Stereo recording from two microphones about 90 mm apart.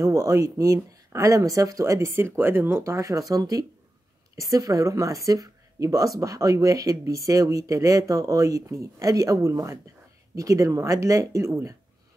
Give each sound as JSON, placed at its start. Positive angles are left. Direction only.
{"t": 0.0, "sound": "speech", "side_deg": -35}